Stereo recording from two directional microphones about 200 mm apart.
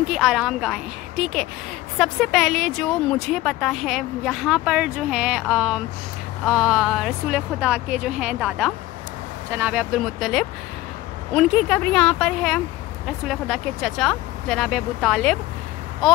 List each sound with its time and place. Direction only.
0.0 s speech: centre (ahead or behind)